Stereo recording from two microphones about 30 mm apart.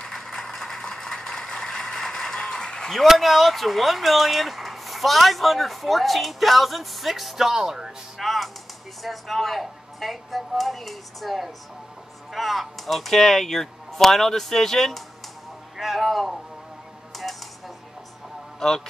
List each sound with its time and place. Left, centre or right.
0.1 s vehicle: centre
1.3 s vehicle: left
2.3 s a sound: left
3.2 s speech: centre
8.2 s speech: centre
15.8 s music: centre
17.1 s typewriter: centre